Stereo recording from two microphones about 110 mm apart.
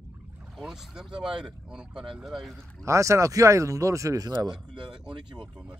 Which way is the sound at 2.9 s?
30° right (ahead or behind).